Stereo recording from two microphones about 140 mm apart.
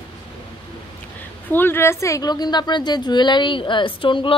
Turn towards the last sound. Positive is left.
turn(degrees=35)  # may be behind; listen again after turning